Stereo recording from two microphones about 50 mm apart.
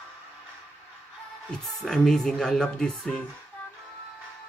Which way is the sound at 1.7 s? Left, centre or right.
Centre.